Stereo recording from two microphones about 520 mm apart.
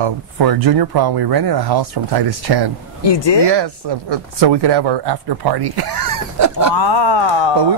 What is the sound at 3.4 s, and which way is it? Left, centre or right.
Speech, right.